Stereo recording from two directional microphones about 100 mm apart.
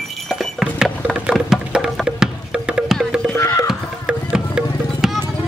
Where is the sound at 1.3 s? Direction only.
5° right (ahead or behind).